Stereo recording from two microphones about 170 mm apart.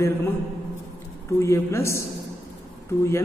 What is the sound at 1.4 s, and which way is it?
Speech, 15° left (ahead or behind).